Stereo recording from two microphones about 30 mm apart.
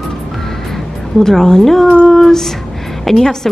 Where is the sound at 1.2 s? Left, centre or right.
Centre.